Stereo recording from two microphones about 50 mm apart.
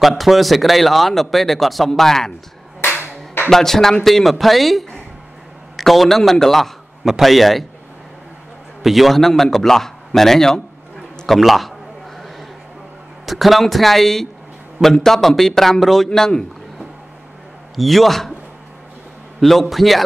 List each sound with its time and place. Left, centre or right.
0.0 s speech: centre
2.8 s clapping: left
3.4 s a man's voice: centre
8.8 s a man's voice: centre
13.2 s a man's voice: centre
17.7 s speech: centre
19.4 s speech: centre